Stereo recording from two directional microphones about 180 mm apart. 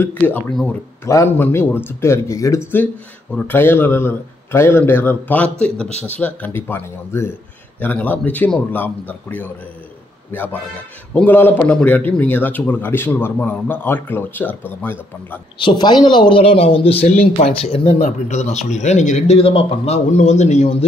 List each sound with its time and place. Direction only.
0.0 s a man's voice: 5° left (ahead or behind)
15.6 s speech: 25° left (ahead or behind)